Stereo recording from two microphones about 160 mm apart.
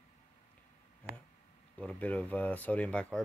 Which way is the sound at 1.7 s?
10° left (ahead or behind).